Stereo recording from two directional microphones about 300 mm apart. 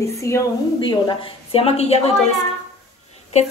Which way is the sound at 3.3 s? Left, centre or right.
Left.